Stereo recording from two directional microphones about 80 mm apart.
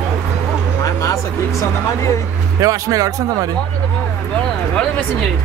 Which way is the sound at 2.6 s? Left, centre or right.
Right.